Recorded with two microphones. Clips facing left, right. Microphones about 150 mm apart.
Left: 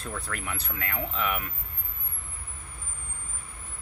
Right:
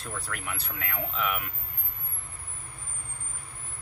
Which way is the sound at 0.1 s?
5° right (ahead or behind).